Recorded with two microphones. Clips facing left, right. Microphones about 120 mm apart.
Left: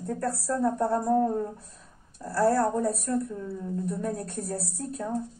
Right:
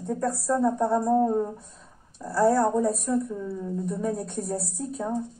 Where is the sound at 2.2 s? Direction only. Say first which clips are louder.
Right 2 dB; centre (ahead or behind).